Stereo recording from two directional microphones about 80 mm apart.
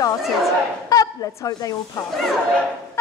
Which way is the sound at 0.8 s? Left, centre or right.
Left.